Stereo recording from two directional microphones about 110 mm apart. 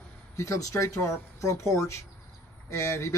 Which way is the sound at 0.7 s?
30° left (ahead or behind).